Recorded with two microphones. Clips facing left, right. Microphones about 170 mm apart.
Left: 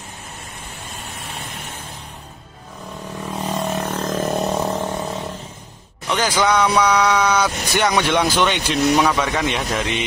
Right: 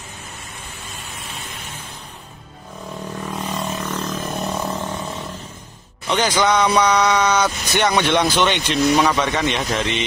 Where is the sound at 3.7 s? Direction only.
55° left (ahead or behind).